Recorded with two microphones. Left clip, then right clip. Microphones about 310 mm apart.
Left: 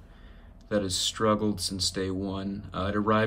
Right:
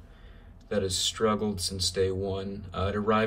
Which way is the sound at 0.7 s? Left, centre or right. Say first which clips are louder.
Even; centre.